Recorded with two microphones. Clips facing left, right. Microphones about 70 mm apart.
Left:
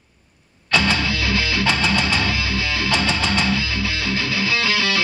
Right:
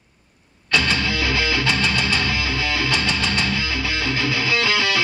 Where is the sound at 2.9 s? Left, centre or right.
Centre.